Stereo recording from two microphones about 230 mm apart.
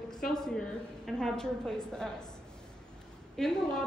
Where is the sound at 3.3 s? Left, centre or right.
Centre.